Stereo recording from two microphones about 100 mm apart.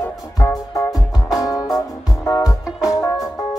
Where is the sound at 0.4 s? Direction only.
35° left (ahead or behind).